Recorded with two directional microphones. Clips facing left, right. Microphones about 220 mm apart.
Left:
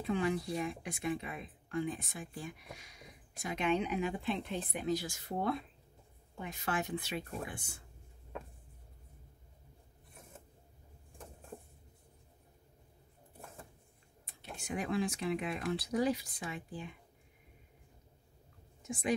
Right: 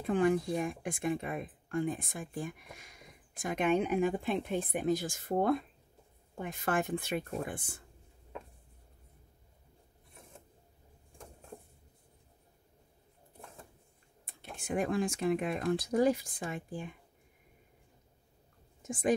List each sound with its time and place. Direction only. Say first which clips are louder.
0.0 s speech: right 5 dB; 50° right (ahead or behind)
14.2 s speech: right 2 dB; 50° right (ahead or behind)
18.8 s a woman's voice: right 5 dB; 45° right (ahead or behind)